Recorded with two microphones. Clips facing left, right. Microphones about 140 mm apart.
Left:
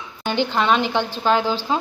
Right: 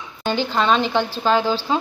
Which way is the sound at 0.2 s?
15° left (ahead or behind).